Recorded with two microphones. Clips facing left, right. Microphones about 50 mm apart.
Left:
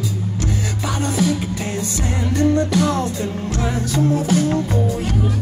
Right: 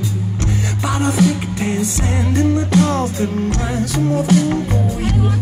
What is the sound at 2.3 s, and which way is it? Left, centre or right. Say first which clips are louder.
Music: right 1 dB; right.